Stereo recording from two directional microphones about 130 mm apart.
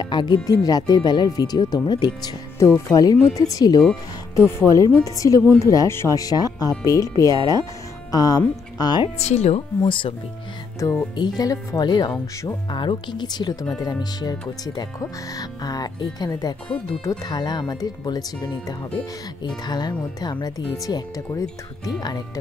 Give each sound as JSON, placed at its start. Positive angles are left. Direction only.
{"t": 0.0, "sound": "speech", "side_deg": 35}
{"t": 9.2, "sound": "speech", "side_deg": 60}
{"t": 9.8, "sound": "speech", "side_deg": 40}
{"t": 10.8, "sound": "speech", "side_deg": 25}
{"t": 16.6, "sound": "speech", "side_deg": 10}
{"t": 17.2, "sound": "speech", "side_deg": 35}